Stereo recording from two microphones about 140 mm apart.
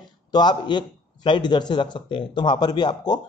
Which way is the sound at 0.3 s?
30° left (ahead or behind).